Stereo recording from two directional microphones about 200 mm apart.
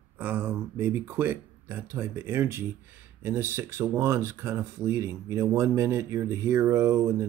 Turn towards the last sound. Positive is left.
turn(degrees=-15)  # may be behind; listen again after turning